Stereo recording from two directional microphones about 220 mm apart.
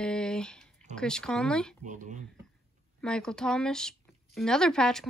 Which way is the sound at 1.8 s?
35° right (ahead or behind).